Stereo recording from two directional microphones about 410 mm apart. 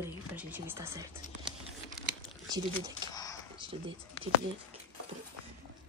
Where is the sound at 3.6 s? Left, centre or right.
Centre.